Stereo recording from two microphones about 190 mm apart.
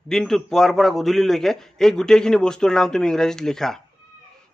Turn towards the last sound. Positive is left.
turn(degrees=0)  # may be behind; listen again after turning